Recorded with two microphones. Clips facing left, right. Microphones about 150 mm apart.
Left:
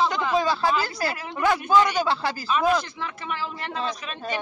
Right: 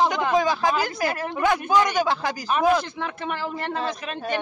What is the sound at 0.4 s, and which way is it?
A woman's voice, 15° right (ahead or behind).